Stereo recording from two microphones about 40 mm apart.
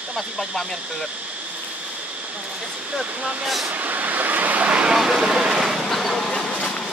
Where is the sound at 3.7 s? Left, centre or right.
Right.